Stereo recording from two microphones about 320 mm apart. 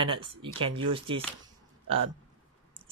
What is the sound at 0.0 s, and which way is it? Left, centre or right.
Speech, centre.